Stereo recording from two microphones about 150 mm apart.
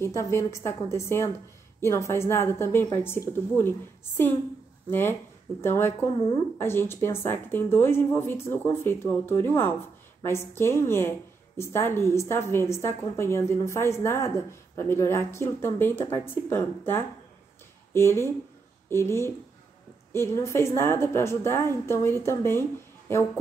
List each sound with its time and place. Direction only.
0.0 s a woman's voice: 20° left (ahead or behind)
4.8 s a woman's voice: 15° left (ahead or behind)